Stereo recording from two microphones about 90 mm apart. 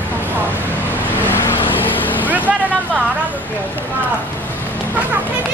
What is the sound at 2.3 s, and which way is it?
Vehicle, 20° right (ahead or behind).